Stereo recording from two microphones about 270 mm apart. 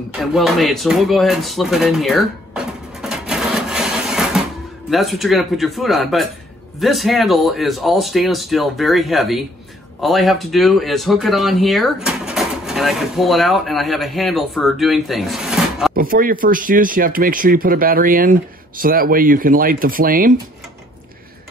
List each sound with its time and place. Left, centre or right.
0.2 s a sound: centre
4.8 s speech: centre
15.9 s speech: right